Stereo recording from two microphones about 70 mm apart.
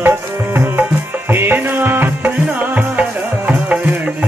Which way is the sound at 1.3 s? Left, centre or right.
Right.